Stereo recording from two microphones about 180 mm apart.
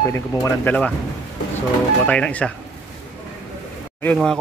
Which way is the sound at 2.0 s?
5° left (ahead or behind).